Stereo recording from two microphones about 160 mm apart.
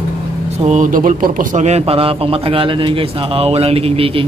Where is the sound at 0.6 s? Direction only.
55° right (ahead or behind).